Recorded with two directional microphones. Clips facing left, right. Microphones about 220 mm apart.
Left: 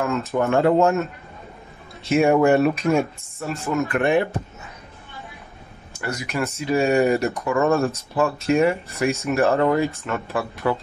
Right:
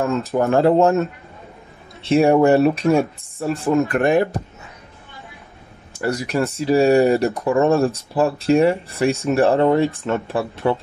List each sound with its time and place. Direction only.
0.3 s speech: 35° right (ahead or behind)
2.0 s speech: 30° right (ahead or behind)
5.9 s speech: 35° right (ahead or behind)